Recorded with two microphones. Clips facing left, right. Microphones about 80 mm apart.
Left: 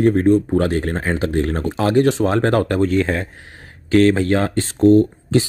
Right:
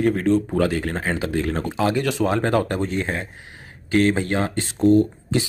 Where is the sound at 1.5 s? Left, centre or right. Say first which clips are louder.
Left 3 dB; left.